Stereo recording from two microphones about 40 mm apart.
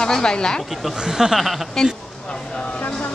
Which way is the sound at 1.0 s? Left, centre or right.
Centre.